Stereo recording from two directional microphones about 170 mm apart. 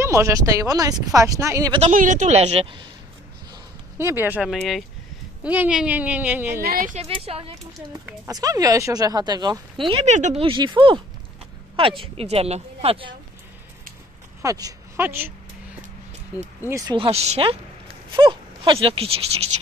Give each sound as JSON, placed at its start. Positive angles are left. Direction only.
{"t": 0.0, "sound": "speech", "side_deg": -15}
{"t": 1.9, "sound": "a woman's voice", "side_deg": -50}
{"t": 4.0, "sound": "speech", "side_deg": -10}
{"t": 6.6, "sound": "speech", "side_deg": -55}
{"t": 7.0, "sound": "a woman's voice", "side_deg": -35}
{"t": 8.3, "sound": "speech", "side_deg": -20}
{"t": 10.0, "sound": "speech", "side_deg": -45}
{"t": 10.4, "sound": "speech", "side_deg": -25}
{"t": 12.0, "sound": "a woman's voice", "side_deg": -35}
{"t": 14.4, "sound": "speech", "side_deg": -20}
{"t": 16.6, "sound": "speech", "side_deg": -20}
{"t": 16.9, "sound": "a woman's voice", "side_deg": -35}